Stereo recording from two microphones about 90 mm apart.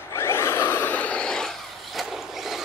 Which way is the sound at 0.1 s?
30° left (ahead or behind).